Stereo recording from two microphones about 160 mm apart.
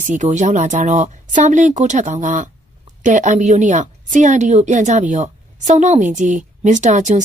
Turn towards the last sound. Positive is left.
turn(degrees=-50)  # may be behind; listen again after turning